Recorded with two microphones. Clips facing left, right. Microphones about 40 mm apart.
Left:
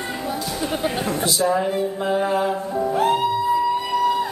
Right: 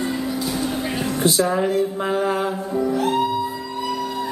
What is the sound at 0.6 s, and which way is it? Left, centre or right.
Music, left.